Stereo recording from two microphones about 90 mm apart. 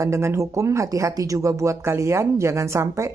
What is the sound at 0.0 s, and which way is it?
Speech, 30° right (ahead or behind).